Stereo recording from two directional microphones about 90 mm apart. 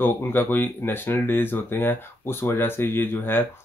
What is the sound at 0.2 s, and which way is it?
Speech, 25° left (ahead or behind).